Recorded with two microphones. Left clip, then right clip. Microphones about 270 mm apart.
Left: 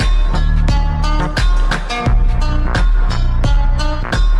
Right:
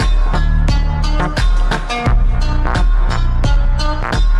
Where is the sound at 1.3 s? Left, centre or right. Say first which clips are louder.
Even; centre.